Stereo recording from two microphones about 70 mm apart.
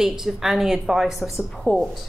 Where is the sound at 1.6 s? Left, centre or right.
Centre.